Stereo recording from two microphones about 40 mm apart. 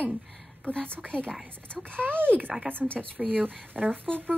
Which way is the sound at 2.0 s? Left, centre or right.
Right.